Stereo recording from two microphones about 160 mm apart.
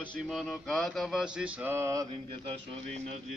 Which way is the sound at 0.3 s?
Centre (ahead or behind).